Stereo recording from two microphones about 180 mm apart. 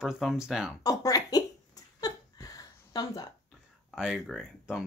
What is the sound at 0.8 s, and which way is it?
Speech, 20° left (ahead or behind).